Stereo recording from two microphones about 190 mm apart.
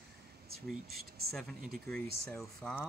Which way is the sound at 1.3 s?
Centre (ahead or behind).